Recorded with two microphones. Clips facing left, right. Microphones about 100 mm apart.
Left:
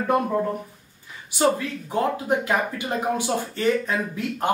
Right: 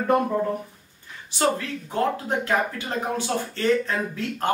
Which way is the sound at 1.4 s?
15° left (ahead or behind).